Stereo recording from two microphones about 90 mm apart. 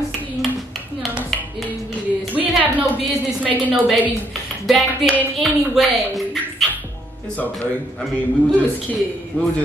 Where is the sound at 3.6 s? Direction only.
15° right (ahead or behind).